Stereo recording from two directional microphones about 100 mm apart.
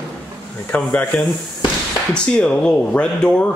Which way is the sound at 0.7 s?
15° left (ahead or behind).